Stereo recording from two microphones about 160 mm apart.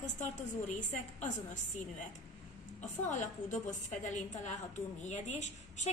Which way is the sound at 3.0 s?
50° left (ahead or behind).